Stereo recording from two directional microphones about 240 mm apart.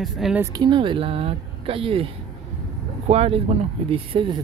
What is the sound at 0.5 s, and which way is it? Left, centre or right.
Speech, centre.